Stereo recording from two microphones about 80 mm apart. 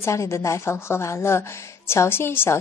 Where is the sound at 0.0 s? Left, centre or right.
Left.